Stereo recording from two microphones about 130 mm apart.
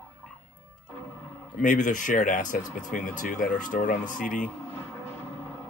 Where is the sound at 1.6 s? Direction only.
85° left.